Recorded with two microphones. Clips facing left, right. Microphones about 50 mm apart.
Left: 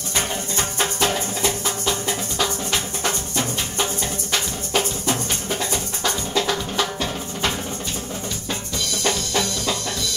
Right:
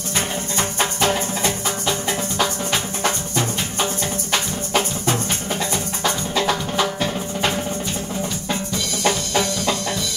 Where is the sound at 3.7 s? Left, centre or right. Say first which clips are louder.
Right 2 dB; centre.